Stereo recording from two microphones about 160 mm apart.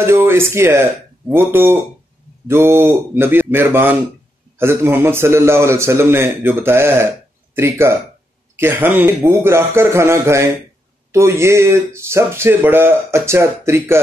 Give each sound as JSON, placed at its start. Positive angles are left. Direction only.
{"t": 0.0, "sound": "a man's voice", "side_deg": -15}